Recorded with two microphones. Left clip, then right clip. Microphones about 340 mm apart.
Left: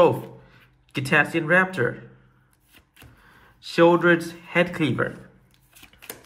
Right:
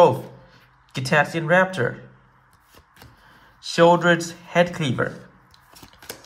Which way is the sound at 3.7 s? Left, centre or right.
Centre.